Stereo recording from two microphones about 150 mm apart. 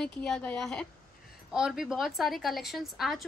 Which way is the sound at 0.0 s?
5° left (ahead or behind).